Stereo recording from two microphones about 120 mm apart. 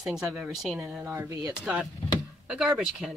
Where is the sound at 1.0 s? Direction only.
20° right (ahead or behind).